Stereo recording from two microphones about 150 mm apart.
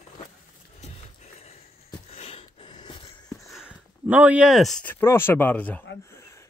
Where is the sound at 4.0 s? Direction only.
10° right (ahead or behind).